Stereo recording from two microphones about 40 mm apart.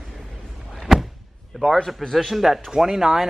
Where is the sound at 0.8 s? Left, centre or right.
Centre.